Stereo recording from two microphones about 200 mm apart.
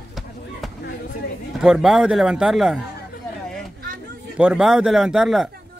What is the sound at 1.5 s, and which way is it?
Speech, 5° right (ahead or behind).